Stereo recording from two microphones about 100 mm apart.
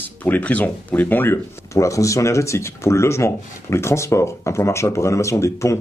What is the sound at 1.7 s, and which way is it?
Speech, 30° left (ahead or behind).